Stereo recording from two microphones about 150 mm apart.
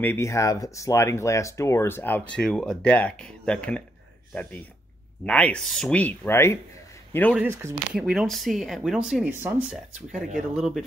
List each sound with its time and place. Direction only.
0.0 s speech: 15° left (ahead or behind)
7.4 s speech: 15° right (ahead or behind)
7.9 s speech: 5° right (ahead or behind)